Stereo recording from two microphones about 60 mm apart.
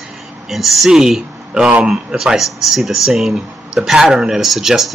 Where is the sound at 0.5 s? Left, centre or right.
Centre.